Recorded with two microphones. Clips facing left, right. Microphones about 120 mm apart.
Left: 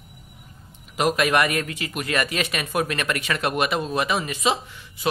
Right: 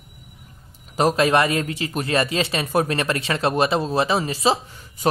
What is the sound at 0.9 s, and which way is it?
Speech, 35° right (ahead or behind).